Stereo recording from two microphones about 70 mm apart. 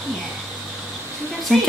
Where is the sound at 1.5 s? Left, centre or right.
Centre.